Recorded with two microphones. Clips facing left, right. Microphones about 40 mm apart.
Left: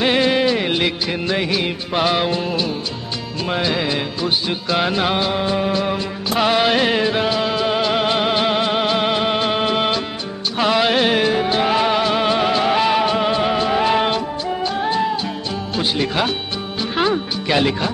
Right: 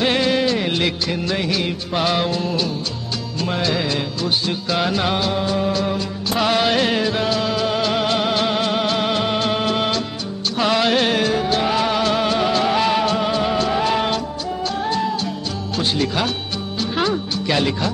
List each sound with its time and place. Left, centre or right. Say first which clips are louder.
0.0 s music of bollywood: left 2 dB; centre
3.4 s music: left 1 dB; centre